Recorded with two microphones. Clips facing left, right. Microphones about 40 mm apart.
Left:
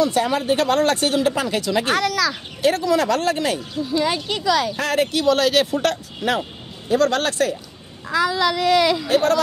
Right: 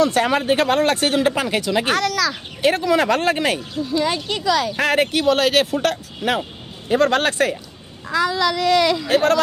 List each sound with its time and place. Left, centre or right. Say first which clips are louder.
0.0 s speech: right 2 dB; right
0.4 s speech: right 1 dB; right
0.7 s speech: even; right
1.0 s speech: right 1 dB; right
2.0 s speech: even; centre
2.6 s speech: right 1 dB; right
3.7 s speech: even; centre
4.7 s speech: right 2 dB; right
5.7 s speech: even; centre
6.9 s speech: right 2 dB; right
8.1 s speech: even; centre
9.1 s speech: right 2 dB; right